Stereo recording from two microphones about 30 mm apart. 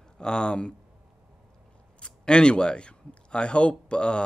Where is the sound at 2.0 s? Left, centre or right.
Left.